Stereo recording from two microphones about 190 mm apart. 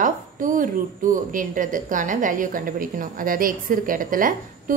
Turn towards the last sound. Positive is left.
turn(degrees=-45)  # may be behind; listen again after turning